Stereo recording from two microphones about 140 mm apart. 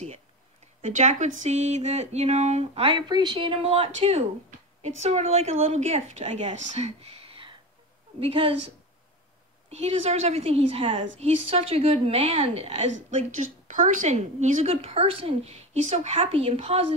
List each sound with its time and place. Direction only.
0.8 s a woman's voice: 60° right (ahead or behind)
13.4 s speech: 65° right (ahead or behind); by 16.8 s 45° right (ahead or behind)